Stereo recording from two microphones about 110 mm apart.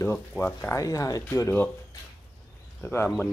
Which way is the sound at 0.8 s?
30° left (ahead or behind).